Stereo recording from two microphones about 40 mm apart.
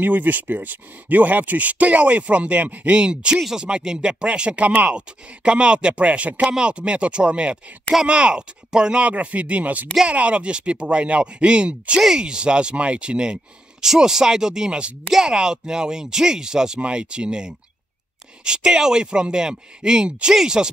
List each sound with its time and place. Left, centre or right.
0.0 s speech: right
3.0 s speech: right
6.4 s speech: right
9.0 s speech: right; by 20.7 s centre